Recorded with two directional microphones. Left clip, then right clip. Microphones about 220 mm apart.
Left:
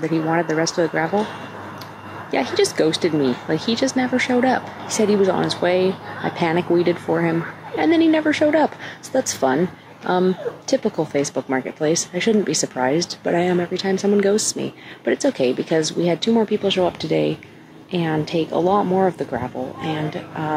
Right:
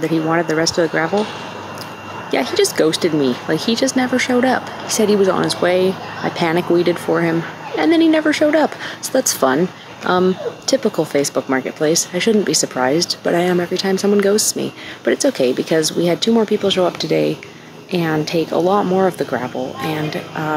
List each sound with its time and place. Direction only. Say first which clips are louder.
0.0 s speech: right 3 dB; 5° right (ahead or behind)
2.3 s speech: right 3 dB; 5° right (ahead or behind)